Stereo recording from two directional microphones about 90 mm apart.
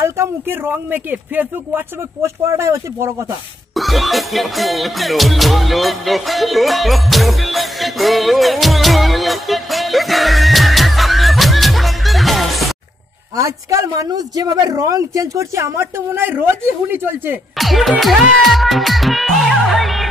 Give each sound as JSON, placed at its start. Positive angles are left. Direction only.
{"t": 0.0, "sound": "speech", "side_deg": -25}
{"t": 3.7, "sound": "music", "side_deg": 0}
{"t": 13.4, "sound": "speech", "side_deg": -35}
{"t": 17.6, "sound": "music", "side_deg": 0}